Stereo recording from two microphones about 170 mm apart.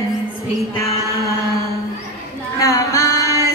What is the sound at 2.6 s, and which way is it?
Music, 20° left (ahead or behind).